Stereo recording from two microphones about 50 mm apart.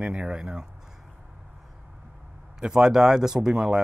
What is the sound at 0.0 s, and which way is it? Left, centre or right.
Speech, right.